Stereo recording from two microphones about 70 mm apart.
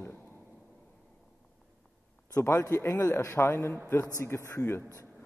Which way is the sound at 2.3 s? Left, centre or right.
Left.